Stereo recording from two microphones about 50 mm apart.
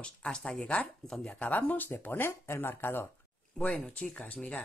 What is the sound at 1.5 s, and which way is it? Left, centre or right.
Speech, left.